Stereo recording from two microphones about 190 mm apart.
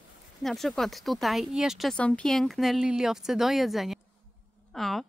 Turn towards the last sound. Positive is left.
turn(degrees=0)  # may be behind; listen again after turning